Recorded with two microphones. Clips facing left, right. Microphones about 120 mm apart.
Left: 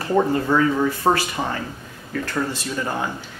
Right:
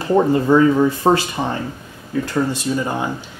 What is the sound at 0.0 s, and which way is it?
Speech, 20° right (ahead or behind).